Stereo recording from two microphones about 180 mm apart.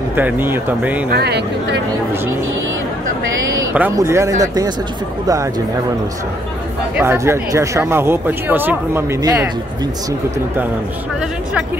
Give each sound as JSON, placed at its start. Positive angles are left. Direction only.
{"t": 0.1, "sound": "speech", "side_deg": -10}
{"t": 1.1, "sound": "speech", "side_deg": -65}
{"t": 3.7, "sound": "speech", "side_deg": -10}
{"t": 7.0, "sound": "speech", "side_deg": -15}